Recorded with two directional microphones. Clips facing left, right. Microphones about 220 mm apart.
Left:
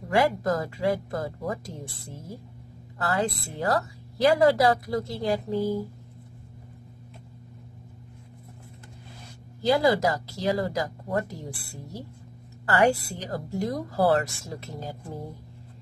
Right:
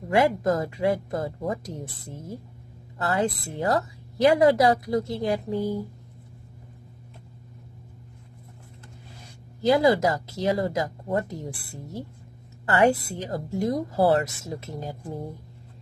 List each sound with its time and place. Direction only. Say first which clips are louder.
0.1 s a woman's voice: right 2 dB; 20° right (ahead or behind)
3.0 s a woman's voice: right 2 dB; 25° right (ahead or behind)
9.6 s a woman's voice: right 2 dB; 20° right (ahead or behind)